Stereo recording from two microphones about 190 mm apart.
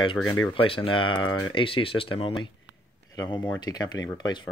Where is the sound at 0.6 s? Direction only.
25° left (ahead or behind).